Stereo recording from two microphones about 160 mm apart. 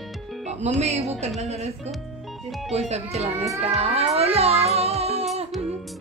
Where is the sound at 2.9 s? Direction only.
40° right (ahead or behind).